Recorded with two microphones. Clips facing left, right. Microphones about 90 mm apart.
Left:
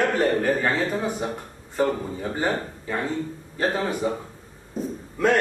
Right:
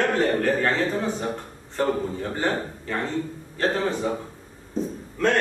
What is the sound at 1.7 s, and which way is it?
Speech, 10° left (ahead or behind).